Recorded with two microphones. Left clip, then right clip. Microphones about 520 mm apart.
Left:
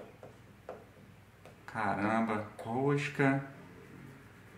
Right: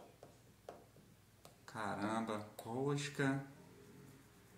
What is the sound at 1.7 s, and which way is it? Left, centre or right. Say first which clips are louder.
Speech: left 9 dB; right.